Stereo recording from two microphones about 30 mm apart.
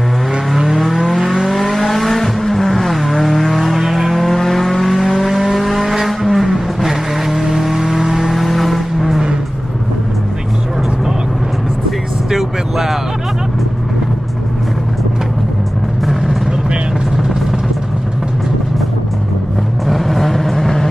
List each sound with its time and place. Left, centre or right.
1.2 s vehicle: centre
1.5 s vehicle: centre
8.4 s vehicle: centre
12.3 s vehicle: centre
19.9 s vehicle: centre